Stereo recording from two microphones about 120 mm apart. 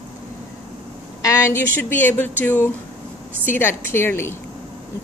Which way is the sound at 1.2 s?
25° left (ahead or behind).